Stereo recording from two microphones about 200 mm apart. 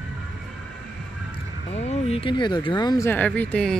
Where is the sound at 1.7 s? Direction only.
35° left (ahead or behind); by 3.7 s 5° left (ahead or behind).